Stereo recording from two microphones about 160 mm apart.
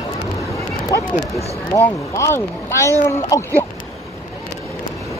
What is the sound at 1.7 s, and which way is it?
Speech, 20° left (ahead or behind).